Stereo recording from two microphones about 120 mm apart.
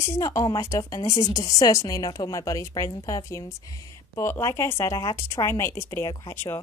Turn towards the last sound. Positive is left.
turn(degrees=20)  # may be behind; listen again after turning